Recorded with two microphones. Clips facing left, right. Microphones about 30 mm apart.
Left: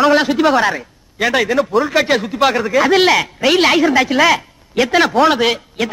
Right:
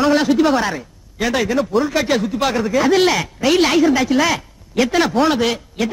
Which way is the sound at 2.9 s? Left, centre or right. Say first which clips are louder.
Left 3 dB; left.